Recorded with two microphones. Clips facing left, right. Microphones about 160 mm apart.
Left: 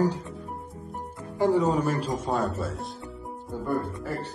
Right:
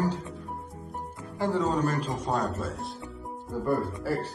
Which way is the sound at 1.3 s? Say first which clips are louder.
Left 4 dB; 15° left (ahead or behind).